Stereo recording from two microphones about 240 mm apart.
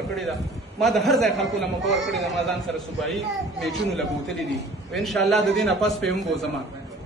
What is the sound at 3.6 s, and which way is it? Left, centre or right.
A man's voice, centre.